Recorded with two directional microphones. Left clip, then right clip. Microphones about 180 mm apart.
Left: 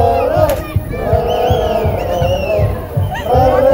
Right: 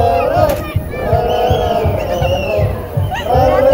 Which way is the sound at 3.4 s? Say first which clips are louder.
Even; 60° left (ahead or behind).